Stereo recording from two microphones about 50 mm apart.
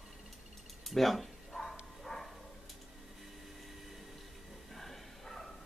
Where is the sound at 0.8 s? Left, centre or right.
Centre.